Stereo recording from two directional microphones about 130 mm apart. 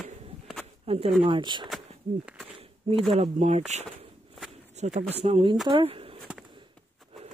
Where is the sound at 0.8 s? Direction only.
50° right (ahead or behind).